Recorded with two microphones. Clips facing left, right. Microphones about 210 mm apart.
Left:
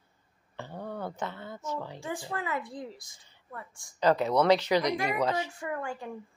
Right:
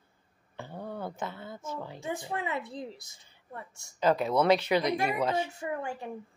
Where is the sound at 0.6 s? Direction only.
10° right (ahead or behind).